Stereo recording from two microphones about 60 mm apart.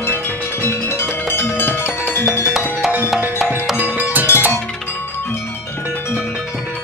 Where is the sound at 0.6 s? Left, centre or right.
Left.